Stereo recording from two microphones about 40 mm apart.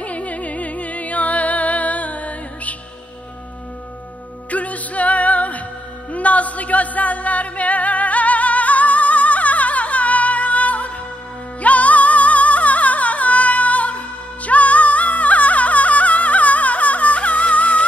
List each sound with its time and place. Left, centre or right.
0.0 s music: left
4.5 s music: left